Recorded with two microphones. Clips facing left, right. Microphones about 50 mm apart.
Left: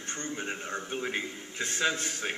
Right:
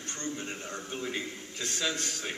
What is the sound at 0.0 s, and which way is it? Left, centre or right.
A man's voice, centre.